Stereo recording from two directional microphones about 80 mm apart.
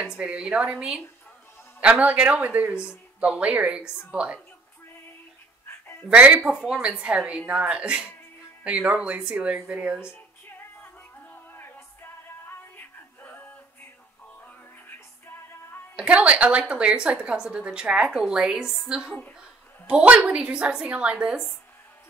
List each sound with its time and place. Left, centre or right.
0.0 s a woman's voice: centre
6.0 s a woman's voice: centre
10.8 s music: left
16.0 s a woman's voice: centre